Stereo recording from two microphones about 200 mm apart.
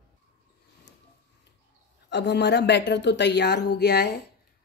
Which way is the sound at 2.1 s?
60° left (ahead or behind).